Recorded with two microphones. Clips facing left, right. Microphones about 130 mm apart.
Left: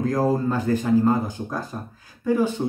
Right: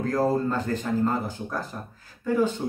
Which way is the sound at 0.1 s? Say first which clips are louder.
Right 1 dB; 10° left (ahead or behind).